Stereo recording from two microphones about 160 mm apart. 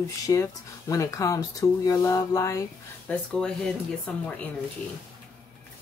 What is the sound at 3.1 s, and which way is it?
Speech, 5° left (ahead or behind).